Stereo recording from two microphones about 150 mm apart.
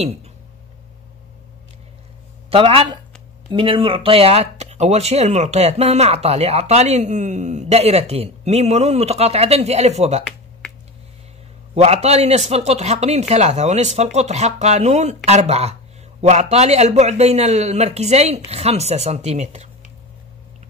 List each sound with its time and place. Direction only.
2.5 s speech: 40° right (ahead or behind)
11.7 s speech: 45° right (ahead or behind)